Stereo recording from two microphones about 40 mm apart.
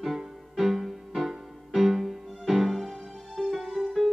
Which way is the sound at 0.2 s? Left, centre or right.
Centre.